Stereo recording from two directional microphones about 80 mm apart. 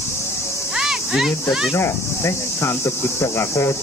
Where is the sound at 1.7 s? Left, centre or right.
Left.